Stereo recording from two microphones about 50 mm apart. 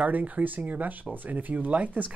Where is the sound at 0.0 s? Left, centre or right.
Right.